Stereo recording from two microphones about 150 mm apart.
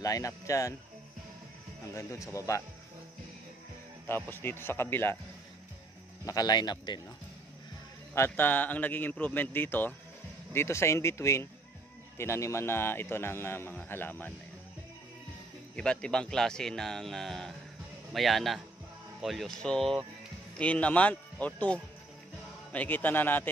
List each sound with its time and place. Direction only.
0.0 s speech: 20° left (ahead or behind)
2.0 s speech: 20° left (ahead or behind)
4.1 s a man's voice: 15° left (ahead or behind)
6.2 s speech: 25° left (ahead or behind)
8.1 s a man's voice: 15° left (ahead or behind)
15.7 s a man's voice: 5° left (ahead or behind)